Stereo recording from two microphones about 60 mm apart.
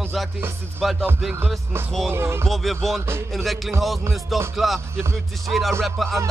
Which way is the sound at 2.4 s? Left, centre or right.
Centre.